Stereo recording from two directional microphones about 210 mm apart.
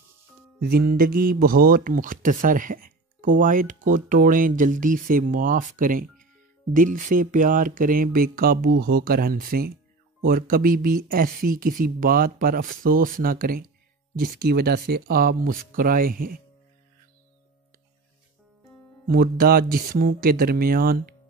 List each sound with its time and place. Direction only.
0.6 s speech: 50° right (ahead or behind)
19.0 s speech: 45° right (ahead or behind)